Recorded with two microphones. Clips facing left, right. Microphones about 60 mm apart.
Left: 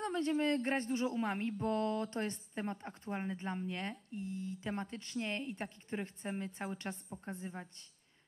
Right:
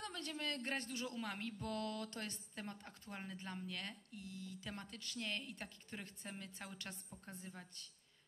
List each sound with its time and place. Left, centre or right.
0.0 s speech: left